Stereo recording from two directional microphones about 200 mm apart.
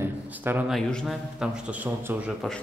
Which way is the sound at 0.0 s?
10° right (ahead or behind).